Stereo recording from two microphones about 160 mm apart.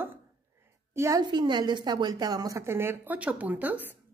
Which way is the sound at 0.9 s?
20° right (ahead or behind).